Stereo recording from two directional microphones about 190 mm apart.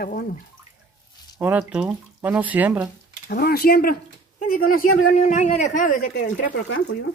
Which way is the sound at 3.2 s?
50° left (ahead or behind).